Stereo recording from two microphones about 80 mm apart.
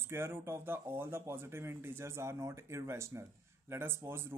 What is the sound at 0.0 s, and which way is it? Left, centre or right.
Speech, right.